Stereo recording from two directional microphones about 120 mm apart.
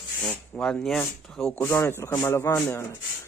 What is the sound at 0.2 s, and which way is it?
Speech, 10° left (ahead or behind).